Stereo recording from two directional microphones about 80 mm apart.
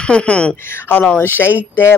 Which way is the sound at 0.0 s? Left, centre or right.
Centre.